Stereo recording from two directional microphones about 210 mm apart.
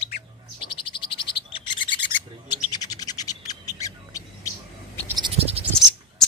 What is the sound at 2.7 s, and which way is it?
Bird, 20° left (ahead or behind).